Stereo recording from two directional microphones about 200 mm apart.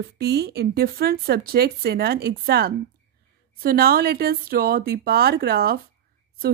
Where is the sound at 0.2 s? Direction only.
55° right (ahead or behind).